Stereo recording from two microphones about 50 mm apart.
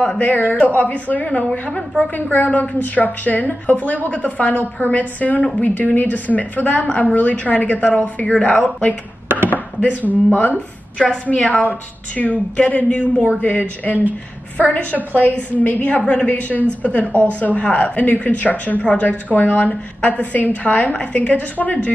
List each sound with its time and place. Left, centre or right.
0.2 s a woman's voice: left
17.9 s a woman's voice: left
18.8 s a woman's voice: left
19.3 s a woman's voice: left